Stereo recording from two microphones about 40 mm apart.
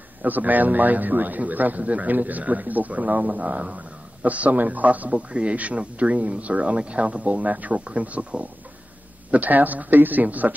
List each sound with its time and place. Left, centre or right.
0.2 s a man's voice: right